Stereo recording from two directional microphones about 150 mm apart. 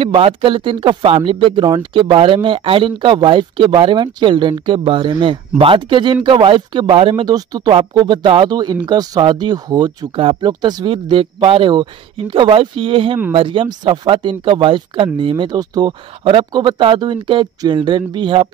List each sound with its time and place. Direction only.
0.0 s speech: 35° right (ahead or behind)